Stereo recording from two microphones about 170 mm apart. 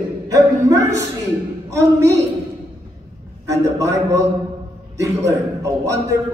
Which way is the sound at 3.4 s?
20° right (ahead or behind).